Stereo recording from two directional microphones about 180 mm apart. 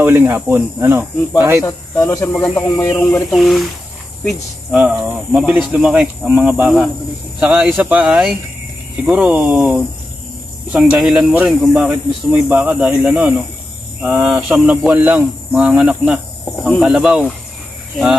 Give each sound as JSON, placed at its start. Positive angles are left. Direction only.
{"t": 0.0, "sound": "speech", "side_deg": -15}
{"t": 1.6, "sound": "speech", "side_deg": 15}